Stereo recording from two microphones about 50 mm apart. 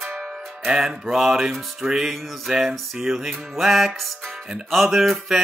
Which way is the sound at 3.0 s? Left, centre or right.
Centre.